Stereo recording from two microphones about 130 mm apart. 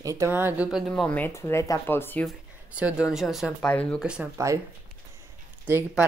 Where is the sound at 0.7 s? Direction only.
Centre (ahead or behind).